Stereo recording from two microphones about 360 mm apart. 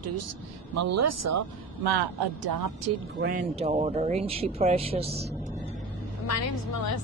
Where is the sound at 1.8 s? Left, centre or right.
Right.